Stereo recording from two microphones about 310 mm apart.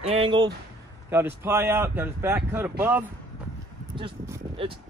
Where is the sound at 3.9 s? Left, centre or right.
Centre.